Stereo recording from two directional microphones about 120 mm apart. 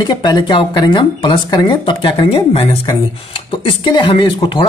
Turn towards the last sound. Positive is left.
turn(degrees=40)  # may be behind; listen again after turning